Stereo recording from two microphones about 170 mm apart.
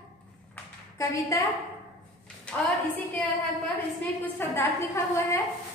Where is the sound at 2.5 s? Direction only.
5° left (ahead or behind).